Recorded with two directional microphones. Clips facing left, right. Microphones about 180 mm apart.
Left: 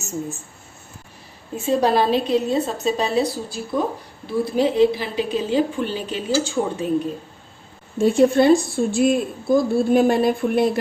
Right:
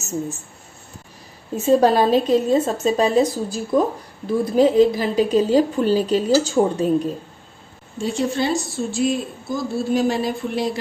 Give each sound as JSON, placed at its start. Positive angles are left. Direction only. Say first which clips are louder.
{"t": 1.6, "sound": "a woman's voice", "louder": "right 3 dB", "side_deg": -45}
{"t": 8.0, "sound": "speech", "louder": "left 7 dB", "side_deg": 55}